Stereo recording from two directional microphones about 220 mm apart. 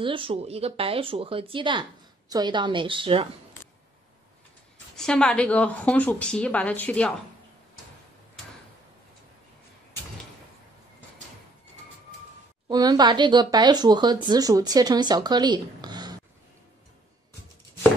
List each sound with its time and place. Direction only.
0.0 s speech: 25° right (ahead or behind)
4.9 s speech: 5° left (ahead or behind)
12.6 s speech: 20° right (ahead or behind)